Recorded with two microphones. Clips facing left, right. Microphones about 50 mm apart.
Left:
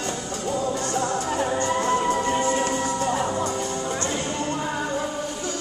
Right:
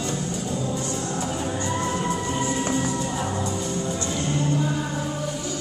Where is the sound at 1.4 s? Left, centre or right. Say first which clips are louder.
Left 3 dB; left.